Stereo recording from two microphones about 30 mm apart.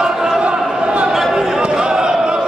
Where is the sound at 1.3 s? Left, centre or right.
Right.